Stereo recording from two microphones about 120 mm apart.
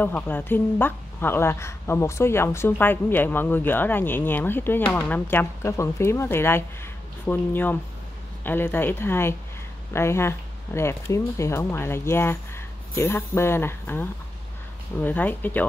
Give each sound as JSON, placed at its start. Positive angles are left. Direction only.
{"t": 0.0, "sound": "a woman's voice", "side_deg": 15}